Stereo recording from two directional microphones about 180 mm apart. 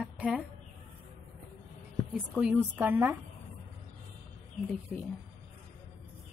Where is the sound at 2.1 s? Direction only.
5° right (ahead or behind).